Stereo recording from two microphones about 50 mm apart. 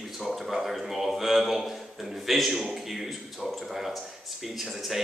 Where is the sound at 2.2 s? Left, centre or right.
Centre.